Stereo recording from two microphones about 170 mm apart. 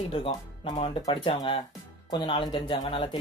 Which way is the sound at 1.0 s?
25° left (ahead or behind).